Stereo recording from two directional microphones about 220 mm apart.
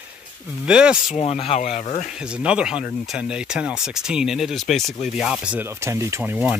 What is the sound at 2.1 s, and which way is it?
Speech, 5° right (ahead or behind).